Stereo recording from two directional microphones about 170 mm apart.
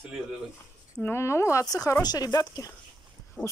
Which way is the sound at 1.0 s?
15° left (ahead or behind).